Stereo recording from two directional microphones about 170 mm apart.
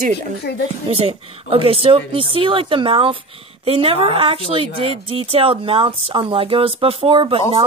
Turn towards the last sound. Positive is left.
turn(degrees=-30)  # may be behind; listen again after turning